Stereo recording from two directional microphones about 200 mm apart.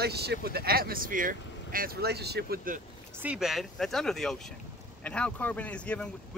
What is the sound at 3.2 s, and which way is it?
Speech, centre (ahead or behind).